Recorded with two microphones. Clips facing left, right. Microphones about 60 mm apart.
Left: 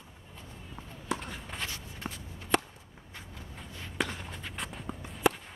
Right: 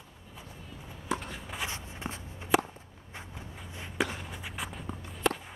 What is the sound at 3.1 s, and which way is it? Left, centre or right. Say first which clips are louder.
Vehicle: right 2 dB; centre.